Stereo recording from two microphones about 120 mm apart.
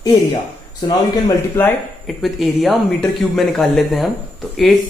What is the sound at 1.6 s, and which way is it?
Speech, 20° left (ahead or behind).